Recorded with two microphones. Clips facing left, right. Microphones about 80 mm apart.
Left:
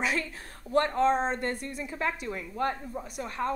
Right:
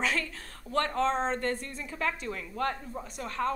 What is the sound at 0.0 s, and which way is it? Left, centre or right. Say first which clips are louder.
Speech: left 1 dB; centre.